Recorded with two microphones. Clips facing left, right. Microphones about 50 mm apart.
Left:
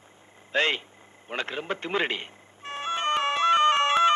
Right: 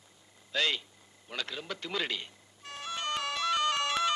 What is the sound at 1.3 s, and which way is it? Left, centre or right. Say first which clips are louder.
Music: left 7 dB; left.